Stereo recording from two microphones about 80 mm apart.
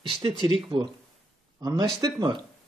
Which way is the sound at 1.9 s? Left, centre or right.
Right.